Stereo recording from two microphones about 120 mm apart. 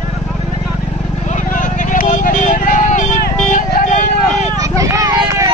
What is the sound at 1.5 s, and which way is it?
Vehicle, 90° left.